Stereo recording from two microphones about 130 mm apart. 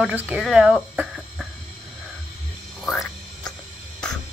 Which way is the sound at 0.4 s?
5° right (ahead or behind).